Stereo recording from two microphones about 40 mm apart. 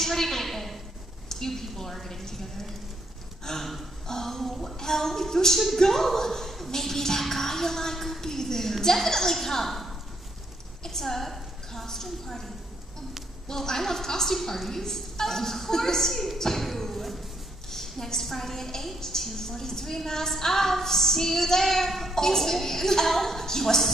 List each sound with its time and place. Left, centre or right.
0.0 s a sound: centre
1.3 s a woman's voice: centre
13.5 s a woman's voice: centre